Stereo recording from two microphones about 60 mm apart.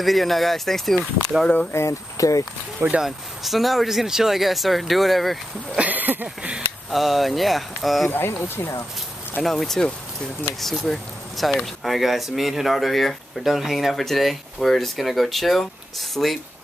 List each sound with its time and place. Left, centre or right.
0.0 s speech: centre
1.7 s speech: left
2.1 s speech: left
3.0 s speech: centre
5.8 s a sound: right
6.2 s a sound: right
6.9 s speech: centre
8.1 s speech: left
9.4 s speech: centre